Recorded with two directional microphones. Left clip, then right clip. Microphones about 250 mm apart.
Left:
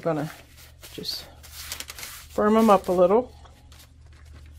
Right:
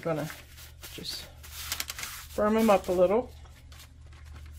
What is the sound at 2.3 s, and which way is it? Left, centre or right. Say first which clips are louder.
Speech: left 5 dB; left.